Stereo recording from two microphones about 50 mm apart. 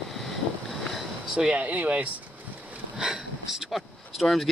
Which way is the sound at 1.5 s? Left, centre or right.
Right.